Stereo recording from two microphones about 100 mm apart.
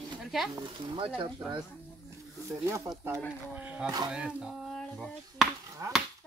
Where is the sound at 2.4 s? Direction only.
30° right (ahead or behind).